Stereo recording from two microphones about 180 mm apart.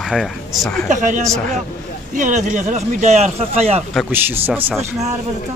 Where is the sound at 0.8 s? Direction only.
45° right (ahead or behind).